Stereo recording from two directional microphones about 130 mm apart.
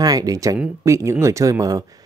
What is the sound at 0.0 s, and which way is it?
Speech, 30° right (ahead or behind).